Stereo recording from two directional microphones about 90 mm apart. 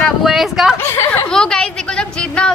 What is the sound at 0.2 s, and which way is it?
Speech, 5° right (ahead or behind).